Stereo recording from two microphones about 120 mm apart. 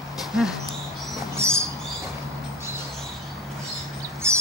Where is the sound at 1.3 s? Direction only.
20° right (ahead or behind).